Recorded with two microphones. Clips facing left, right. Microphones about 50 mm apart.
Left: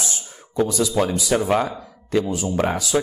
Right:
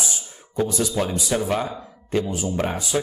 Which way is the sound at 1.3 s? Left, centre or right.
Left.